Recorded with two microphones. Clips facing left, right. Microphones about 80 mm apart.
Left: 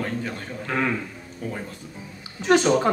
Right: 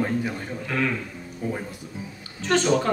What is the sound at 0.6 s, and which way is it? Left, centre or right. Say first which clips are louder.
Speech: left 1 dB; left.